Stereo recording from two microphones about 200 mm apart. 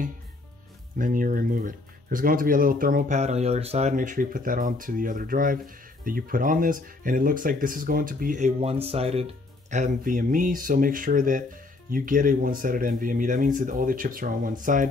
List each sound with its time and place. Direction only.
0.9 s speech: 45° right (ahead or behind)